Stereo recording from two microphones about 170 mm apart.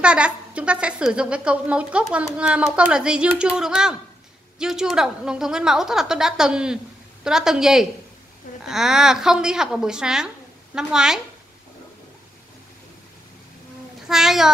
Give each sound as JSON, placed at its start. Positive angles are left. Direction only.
{"t": 0.0, "sound": "a woman's voice", "side_deg": -5}
{"t": 14.0, "sound": "a woman's voice", "side_deg": 0}